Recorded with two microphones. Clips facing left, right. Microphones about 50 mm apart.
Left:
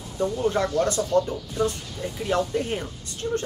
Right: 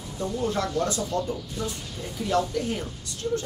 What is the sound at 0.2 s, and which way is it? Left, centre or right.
Speech, left.